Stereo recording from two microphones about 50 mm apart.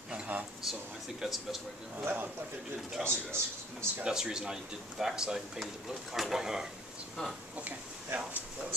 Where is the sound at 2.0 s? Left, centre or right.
Right.